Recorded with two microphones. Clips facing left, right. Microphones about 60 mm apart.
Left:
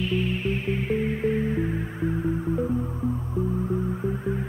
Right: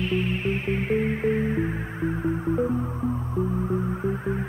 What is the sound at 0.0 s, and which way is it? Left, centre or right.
Music, right.